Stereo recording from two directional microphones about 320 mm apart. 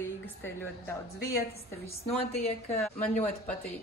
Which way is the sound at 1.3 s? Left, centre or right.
Left.